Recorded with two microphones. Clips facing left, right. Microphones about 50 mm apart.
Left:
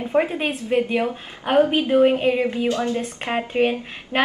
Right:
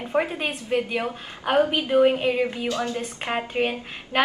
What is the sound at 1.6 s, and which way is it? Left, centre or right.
Speech, left.